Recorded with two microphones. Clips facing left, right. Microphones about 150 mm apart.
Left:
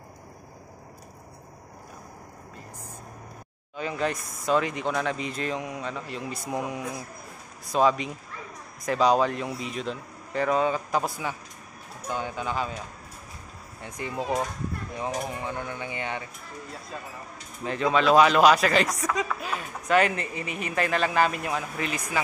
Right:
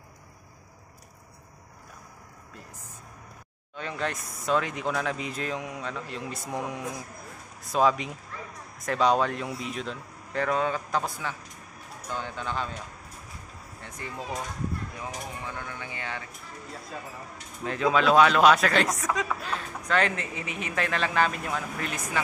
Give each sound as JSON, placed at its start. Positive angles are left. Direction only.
{"t": 3.7, "sound": "speech", "side_deg": 5}
{"t": 13.7, "sound": "speech", "side_deg": 15}
{"t": 17.6, "sound": "speech", "side_deg": 0}
{"t": 19.4, "sound": "speech", "side_deg": 10}